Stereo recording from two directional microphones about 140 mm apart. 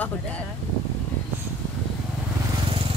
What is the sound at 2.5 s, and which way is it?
Vehicle, 40° right (ahead or behind).